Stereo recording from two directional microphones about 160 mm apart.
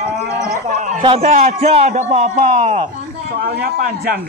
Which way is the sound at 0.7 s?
55° right (ahead or behind).